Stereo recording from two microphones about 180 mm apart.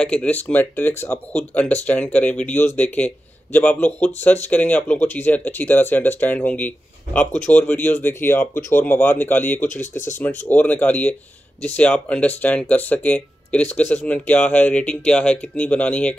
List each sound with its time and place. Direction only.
0.0 s speech: 5° left (ahead or behind)
9.8 s speech: 45° left (ahead or behind)
10.2 s speech: 10° left (ahead or behind)